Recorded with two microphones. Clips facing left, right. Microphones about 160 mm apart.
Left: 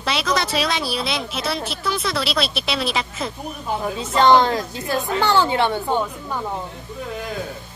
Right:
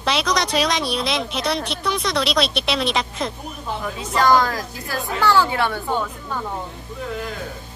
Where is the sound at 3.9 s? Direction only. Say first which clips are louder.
Left 2 dB; 25° left (ahead or behind).